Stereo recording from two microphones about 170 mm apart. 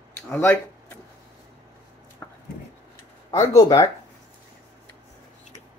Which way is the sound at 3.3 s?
20° left (ahead or behind).